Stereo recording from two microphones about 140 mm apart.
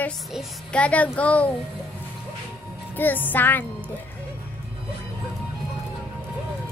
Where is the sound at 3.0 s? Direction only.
15° left (ahead or behind).